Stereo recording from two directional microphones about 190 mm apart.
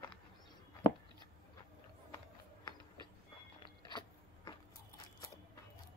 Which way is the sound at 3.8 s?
25° left (ahead or behind).